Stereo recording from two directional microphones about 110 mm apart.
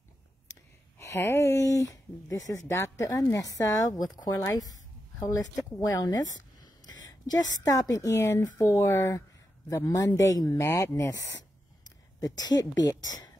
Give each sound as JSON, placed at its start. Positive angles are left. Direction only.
{"t": 0.5, "sound": "speech", "side_deg": 25}
{"t": 12.4, "sound": "speech", "side_deg": 40}